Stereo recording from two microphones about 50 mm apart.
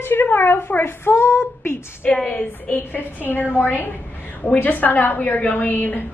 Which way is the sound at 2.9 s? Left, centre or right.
Left.